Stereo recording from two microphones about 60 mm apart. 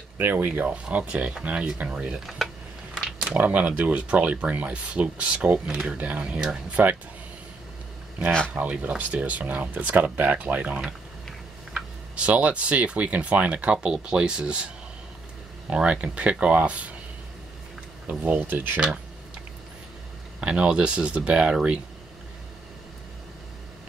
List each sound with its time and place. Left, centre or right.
0.2 s speech: right; by 2.1 s centre
2.1 s speech: centre
2.9 s a sound: centre
3.3 s speech: right
8.5 s speech: right
12.3 s speech: right
15.7 s speech: right
18.2 s speech: right
20.3 s speech: centre